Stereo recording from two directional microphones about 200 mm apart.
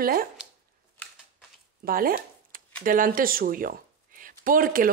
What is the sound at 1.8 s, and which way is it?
Speech, 45° right (ahead or behind).